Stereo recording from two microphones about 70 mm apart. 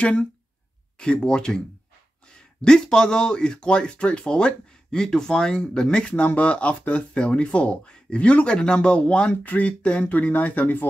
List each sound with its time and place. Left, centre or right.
0.0 s speech: centre
2.6 s speech: centre